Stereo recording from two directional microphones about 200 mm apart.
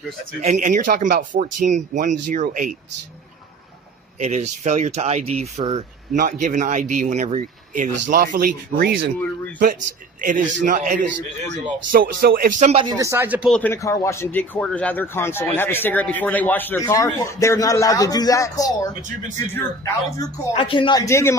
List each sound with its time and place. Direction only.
0.4 s speech: 35° right (ahead or behind)
4.2 s speech: 35° right (ahead or behind); by 9.1 s 50° right (ahead or behind)
10.2 s speech: 40° right (ahead or behind)
12.8 s speech: 15° right (ahead or behind)
13.5 s speech: 10° left (ahead or behind)
20.5 s a man's voice: 25° left (ahead or behind)